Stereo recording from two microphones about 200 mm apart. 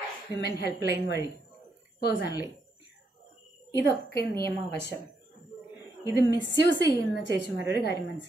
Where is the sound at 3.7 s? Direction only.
60° left (ahead or behind).